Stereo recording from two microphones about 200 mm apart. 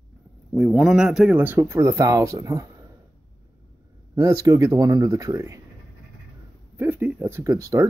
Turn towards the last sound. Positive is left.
turn(degrees=-15)  # may be behind; listen again after turning